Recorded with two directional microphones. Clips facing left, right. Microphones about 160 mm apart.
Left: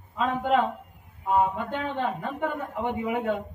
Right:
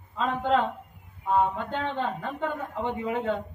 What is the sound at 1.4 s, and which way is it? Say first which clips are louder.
A man's voice: even; 5° left (ahead or behind).